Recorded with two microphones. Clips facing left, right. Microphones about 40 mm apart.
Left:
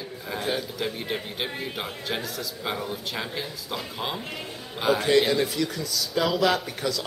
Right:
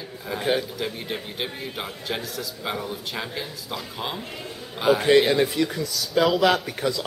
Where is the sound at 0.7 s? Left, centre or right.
Centre.